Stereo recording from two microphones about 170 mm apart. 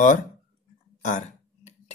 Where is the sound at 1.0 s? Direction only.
45° left (ahead or behind).